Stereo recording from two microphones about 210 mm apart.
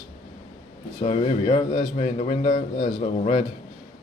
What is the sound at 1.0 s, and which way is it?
A man's voice, 30° left (ahead or behind).